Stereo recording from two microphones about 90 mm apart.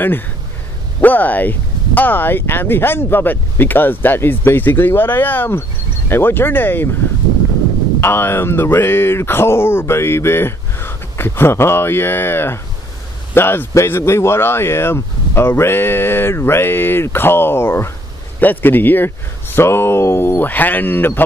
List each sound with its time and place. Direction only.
1.0 s speech: 20° left (ahead or behind)
8.0 s speech: 25° left (ahead or behind)